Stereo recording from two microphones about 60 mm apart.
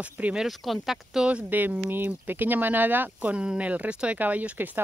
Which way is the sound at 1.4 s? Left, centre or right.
Right.